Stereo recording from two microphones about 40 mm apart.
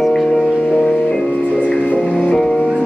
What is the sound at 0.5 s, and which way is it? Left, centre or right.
Music, left.